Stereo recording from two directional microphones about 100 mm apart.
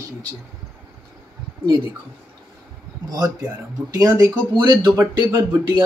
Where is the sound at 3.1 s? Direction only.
40° right (ahead or behind).